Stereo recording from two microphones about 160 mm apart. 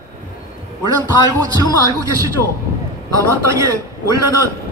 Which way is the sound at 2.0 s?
20° right (ahead or behind).